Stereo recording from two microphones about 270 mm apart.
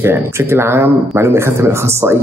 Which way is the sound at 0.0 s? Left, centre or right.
Centre.